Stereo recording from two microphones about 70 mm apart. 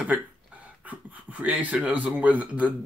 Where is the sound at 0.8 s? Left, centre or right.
Right.